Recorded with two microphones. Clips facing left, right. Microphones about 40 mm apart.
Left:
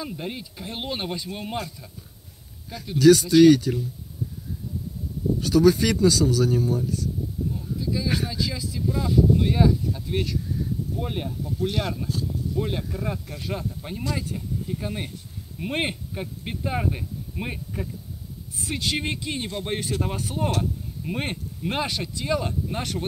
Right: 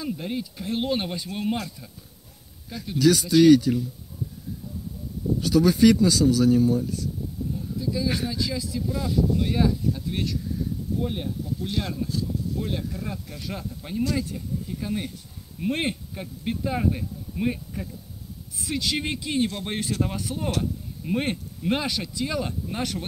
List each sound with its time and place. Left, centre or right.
0.0 s speech: centre
2.7 s speech: centre
5.4 s speech: centre
6.0 s speech: centre
7.5 s a sound: centre
7.8 s speech: centre
10.0 s speech: left
10.4 s a sound: centre
11.0 s speech: left
12.5 s speech: left
13.5 s speech: centre
18.9 s speech: centre